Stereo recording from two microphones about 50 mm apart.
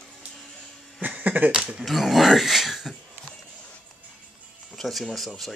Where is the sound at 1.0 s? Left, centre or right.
Right.